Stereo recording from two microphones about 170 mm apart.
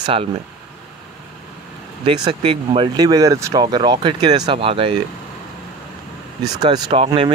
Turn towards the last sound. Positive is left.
turn(degrees=-35)  # may be behind; listen again after turning